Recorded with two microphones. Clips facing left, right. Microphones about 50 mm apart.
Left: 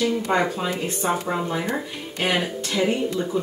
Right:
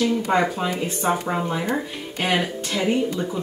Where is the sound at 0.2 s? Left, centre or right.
Centre.